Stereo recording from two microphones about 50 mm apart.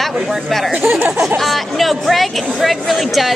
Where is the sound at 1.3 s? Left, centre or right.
Centre.